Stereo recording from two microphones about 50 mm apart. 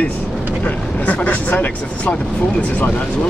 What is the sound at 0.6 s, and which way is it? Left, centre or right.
Speech, left.